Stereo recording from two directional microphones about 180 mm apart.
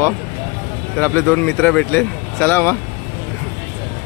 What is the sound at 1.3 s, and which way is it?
Speech, 10° left (ahead or behind).